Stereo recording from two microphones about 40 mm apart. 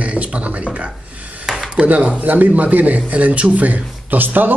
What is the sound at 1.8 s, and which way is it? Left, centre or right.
A man's voice, right.